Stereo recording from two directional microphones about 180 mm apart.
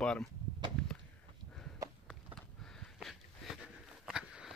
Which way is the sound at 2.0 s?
Centre (ahead or behind).